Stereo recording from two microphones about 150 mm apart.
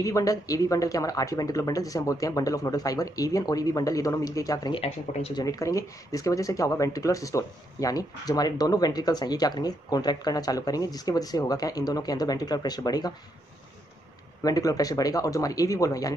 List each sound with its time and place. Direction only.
0.0 s speech: 25° left (ahead or behind)
4.7 s speech: 40° left (ahead or behind)
5.4 s speech: 25° left (ahead or behind)
14.4 s speech: 25° left (ahead or behind)